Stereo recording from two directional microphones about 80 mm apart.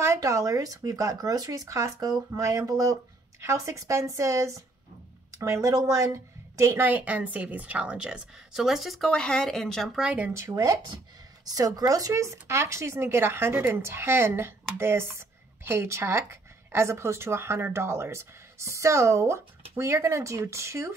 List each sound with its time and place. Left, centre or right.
0.0 s a woman's voice: right
6.9 s a woman's voice: centre
9.1 s speech: centre
9.9 s a woman's voice: centre
10.5 s speech: right